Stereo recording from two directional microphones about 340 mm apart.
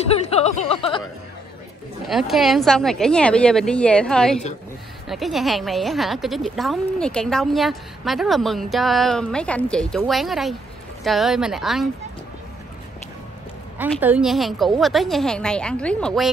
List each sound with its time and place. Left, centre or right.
0.5 s speech: centre
2.0 s a woman's voice: centre
13.7 s a woman's voice: centre